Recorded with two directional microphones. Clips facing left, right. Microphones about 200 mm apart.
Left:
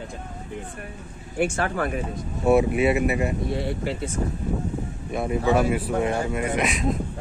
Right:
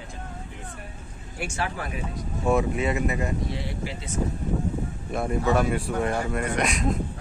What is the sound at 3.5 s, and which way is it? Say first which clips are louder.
Speech: left 6 dB; 55° left (ahead or behind).